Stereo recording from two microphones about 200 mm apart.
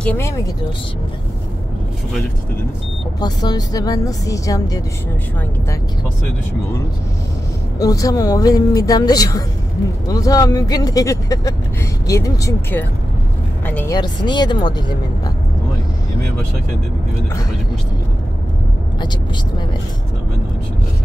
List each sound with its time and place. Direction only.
0.0 s speech: 10° left (ahead or behind)
3.2 s a woman's voice: 20° left (ahead or behind)
7.8 s speech: 15° left (ahead or behind)
13.9 s a woman's voice: 20° left (ahead or behind)